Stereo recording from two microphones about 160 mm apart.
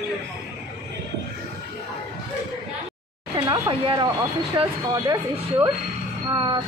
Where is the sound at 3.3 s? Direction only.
25° right (ahead or behind).